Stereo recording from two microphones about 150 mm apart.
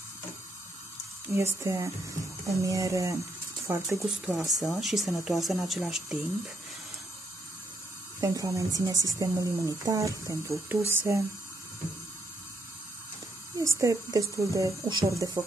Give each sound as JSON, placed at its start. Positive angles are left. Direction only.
{"t": 1.3, "sound": "speech", "side_deg": -20}
{"t": 4.0, "sound": "speech", "side_deg": 0}
{"t": 8.2, "sound": "speech", "side_deg": -20}
{"t": 13.6, "sound": "speech", "side_deg": -20}